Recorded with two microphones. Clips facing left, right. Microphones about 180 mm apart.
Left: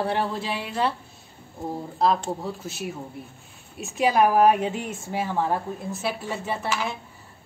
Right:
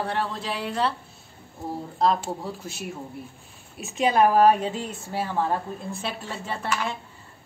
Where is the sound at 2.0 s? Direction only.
Centre (ahead or behind).